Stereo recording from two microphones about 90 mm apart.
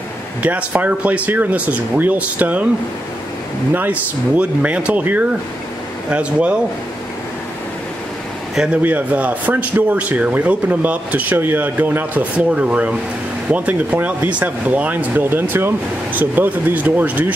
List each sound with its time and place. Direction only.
0.4 s a man's voice: 15° right (ahead or behind)
3.7 s a man's voice: 20° right (ahead or behind)
8.5 s a man's voice: 15° right (ahead or behind)